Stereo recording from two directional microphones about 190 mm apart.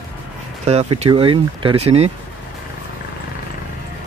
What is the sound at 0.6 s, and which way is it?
Speech, 35° right (ahead or behind).